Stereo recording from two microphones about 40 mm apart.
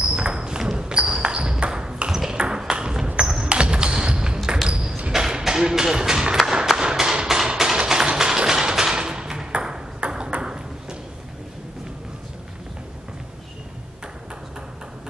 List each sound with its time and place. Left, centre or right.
0.0 s a sound: right
3.2 s basketball bounce: right
4.6 s ping: right
5.1 s a sound: centre
8.2 s music: centre
8.9 s ping: right